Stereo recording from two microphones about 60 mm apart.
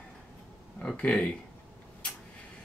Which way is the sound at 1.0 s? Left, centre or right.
Left.